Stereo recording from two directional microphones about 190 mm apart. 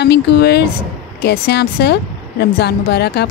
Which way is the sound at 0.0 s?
60° left (ahead or behind).